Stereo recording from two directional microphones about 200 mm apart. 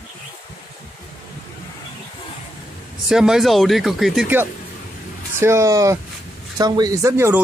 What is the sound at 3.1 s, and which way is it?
Speech, centre (ahead or behind).